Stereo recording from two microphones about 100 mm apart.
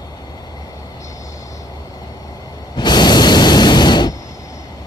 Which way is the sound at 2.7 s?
45° left (ahead or behind).